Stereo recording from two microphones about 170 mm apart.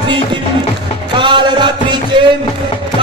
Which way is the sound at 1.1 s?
30° right (ahead or behind).